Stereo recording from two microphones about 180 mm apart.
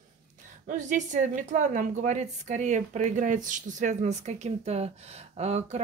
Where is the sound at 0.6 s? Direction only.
45° right (ahead or behind).